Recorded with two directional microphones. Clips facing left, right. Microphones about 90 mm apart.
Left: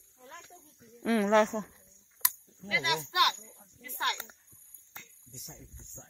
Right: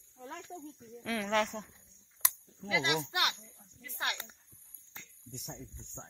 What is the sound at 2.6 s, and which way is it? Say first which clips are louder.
Speech: even; 20° right (ahead or behind).